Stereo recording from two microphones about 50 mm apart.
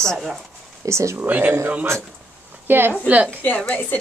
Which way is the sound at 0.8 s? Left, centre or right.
Right.